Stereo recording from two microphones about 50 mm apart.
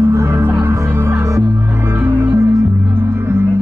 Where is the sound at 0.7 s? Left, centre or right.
Right.